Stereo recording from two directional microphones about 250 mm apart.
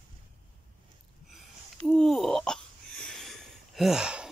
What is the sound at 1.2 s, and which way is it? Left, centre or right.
Hiccup, centre.